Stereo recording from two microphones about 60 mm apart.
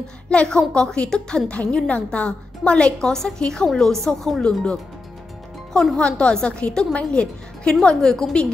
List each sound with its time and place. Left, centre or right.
0.3 s a woman's voice: centre
5.9 s a woman's voice: centre